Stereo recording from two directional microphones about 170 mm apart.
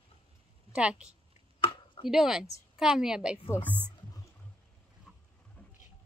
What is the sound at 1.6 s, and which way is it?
Chopping, 30° left (ahead or behind).